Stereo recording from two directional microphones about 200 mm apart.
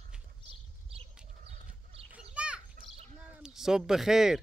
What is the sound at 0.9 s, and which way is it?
Chicken, 30° right (ahead or behind).